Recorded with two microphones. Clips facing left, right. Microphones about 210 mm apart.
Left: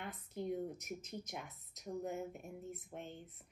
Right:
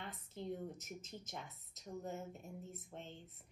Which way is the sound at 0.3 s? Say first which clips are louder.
Left 5 dB; 15° left (ahead or behind).